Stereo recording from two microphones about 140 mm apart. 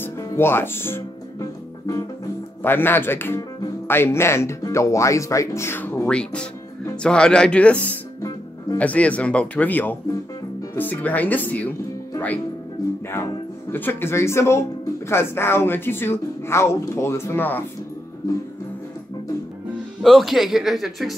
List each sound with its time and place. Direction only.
0.0 s music: 15° left (ahead or behind)
2.6 s speech: 15° left (ahead or behind)
13.7 s speech: 15° left (ahead or behind)
20.0 s speech: centre (ahead or behind)